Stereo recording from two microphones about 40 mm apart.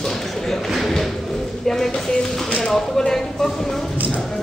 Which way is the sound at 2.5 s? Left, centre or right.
Left.